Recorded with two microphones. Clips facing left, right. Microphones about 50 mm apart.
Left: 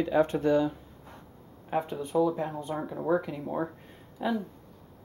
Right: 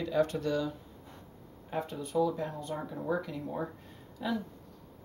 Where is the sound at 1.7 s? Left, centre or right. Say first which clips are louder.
Left 4 dB; left.